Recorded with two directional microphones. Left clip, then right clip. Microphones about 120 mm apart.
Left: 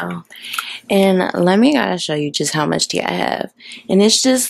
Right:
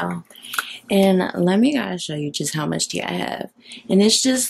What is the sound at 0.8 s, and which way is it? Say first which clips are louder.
Speech: left 4 dB; 20° left (ahead or behind).